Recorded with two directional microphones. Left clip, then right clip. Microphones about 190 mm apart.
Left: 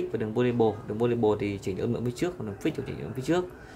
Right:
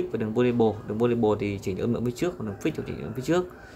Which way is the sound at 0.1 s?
Centre (ahead or behind).